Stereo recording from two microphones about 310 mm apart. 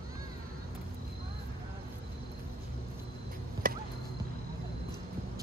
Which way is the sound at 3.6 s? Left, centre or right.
Right.